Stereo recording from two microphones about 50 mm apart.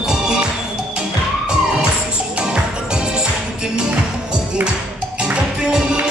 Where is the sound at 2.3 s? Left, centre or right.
Centre.